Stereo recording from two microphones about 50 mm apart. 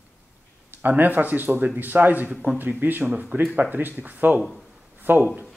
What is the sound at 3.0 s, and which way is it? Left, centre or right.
Speech, right.